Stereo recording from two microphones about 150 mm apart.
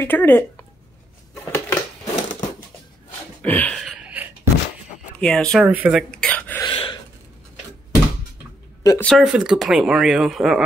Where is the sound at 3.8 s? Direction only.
5° right (ahead or behind).